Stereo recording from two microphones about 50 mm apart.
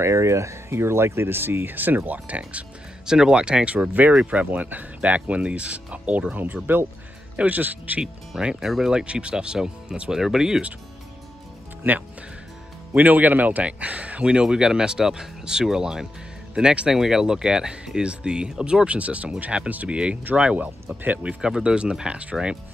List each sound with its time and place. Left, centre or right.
0.0 s speech: right
3.1 s speech: centre
6.3 s speech: right
8.4 s speech: centre
9.0 s speech: right
11.9 s speech: right
21.4 s speech: centre